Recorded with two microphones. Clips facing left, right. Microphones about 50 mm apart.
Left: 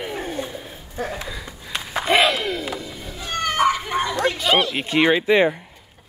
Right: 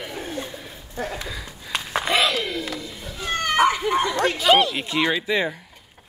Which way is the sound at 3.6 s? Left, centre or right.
Right.